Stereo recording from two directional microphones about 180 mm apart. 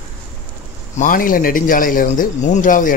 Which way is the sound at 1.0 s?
50° left (ahead or behind).